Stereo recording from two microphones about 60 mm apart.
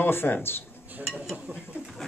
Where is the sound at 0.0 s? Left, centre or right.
Left.